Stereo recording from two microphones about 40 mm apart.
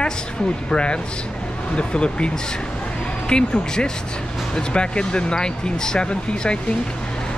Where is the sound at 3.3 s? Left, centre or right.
Left.